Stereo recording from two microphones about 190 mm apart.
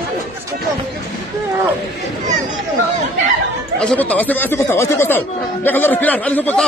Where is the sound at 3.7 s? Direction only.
5° left (ahead or behind).